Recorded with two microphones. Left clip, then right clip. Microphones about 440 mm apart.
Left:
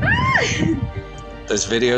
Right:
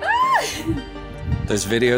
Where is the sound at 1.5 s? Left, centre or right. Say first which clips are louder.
Left 1 dB; right.